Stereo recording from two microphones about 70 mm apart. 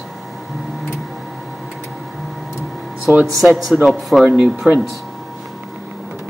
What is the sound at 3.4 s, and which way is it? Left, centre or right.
Speech, centre.